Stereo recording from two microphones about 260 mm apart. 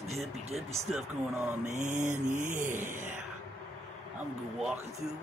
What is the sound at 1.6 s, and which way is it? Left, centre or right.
Speech, right.